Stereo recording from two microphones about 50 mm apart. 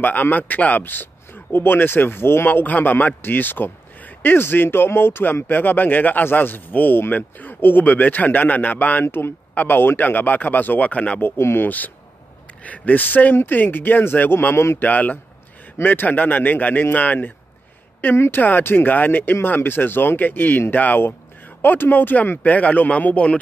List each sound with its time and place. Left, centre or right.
0.0 s speech: left
9.0 s speech: left
11.1 s speech: left
12.6 s speech: left
14.5 s a man's voice: left
14.8 s speech: left
18.1 s a man's voice: left
18.4 s speech: left